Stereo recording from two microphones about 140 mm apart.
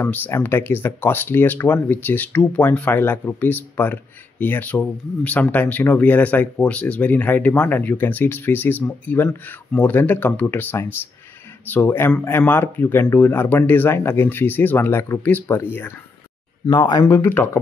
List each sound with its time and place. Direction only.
0.0 s speech: 15° left (ahead or behind)
16.6 s speech: 30° left (ahead or behind)
17.0 s speech: 15° left (ahead or behind)